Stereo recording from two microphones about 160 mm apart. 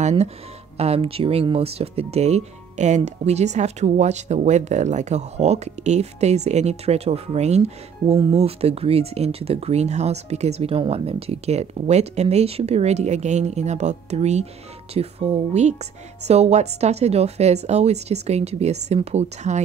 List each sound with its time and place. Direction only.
0.0 s speech: 45° right (ahead or behind)